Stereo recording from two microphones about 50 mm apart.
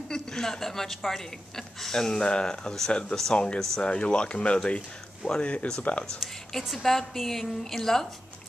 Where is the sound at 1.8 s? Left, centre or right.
Centre; by 6.0 s left.